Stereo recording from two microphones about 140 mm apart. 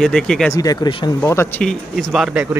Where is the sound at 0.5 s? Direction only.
25° left (ahead or behind).